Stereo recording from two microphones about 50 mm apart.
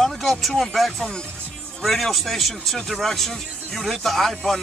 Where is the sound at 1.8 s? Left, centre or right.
Centre.